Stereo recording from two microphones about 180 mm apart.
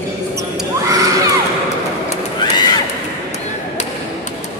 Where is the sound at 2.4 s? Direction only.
25° left (ahead or behind).